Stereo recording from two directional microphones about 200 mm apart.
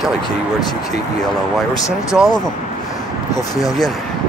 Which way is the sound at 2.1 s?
15° left (ahead or behind).